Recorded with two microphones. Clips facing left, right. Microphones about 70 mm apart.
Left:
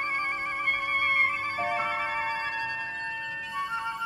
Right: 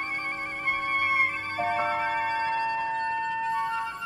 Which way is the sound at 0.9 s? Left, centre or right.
Centre.